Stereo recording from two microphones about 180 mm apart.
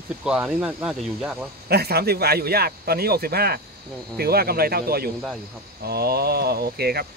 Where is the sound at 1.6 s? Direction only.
60° right (ahead or behind).